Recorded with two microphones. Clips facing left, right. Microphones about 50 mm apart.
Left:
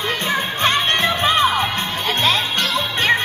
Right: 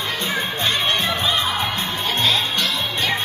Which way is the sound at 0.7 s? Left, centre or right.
Left.